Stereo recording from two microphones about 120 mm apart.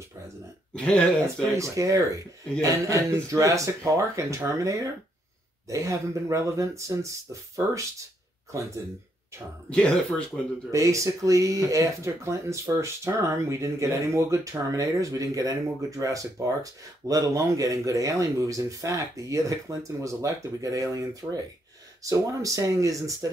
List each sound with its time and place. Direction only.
0.7 s speech: 10° left (ahead or behind)
1.2 s speech: 25° right (ahead or behind)
9.7 s speech: 5° left (ahead or behind)
10.7 s speech: 25° right (ahead or behind)